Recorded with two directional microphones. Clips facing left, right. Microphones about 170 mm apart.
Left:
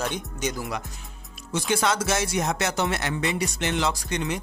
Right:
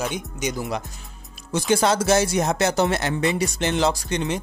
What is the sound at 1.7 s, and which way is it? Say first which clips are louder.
Speech: right 6 dB; 35° right (ahead or behind).